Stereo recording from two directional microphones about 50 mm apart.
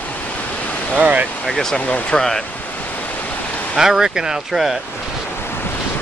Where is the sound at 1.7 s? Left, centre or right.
Left.